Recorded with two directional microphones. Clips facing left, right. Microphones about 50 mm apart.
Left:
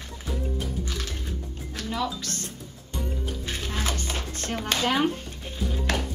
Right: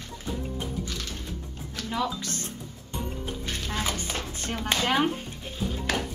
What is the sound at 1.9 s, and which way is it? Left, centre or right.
Speech, centre.